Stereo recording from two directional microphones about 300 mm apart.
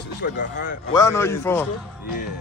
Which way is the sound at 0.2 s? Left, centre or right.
Left.